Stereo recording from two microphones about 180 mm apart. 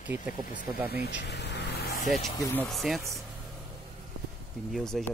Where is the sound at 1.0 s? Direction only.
70° left (ahead or behind).